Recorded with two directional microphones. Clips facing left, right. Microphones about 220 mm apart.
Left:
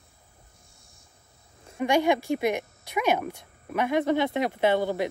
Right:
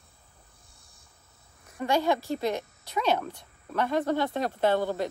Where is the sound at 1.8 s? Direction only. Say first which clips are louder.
Left 3 dB; 15° left (ahead or behind).